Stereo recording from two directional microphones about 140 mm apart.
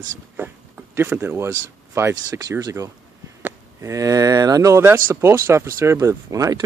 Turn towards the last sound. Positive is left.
turn(degrees=-25)  # may be behind; listen again after turning